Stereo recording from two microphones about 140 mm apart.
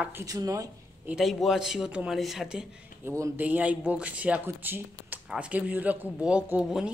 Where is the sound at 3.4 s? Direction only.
10° right (ahead or behind).